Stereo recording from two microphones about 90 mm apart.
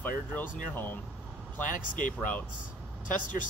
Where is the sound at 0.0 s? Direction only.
20° left (ahead or behind).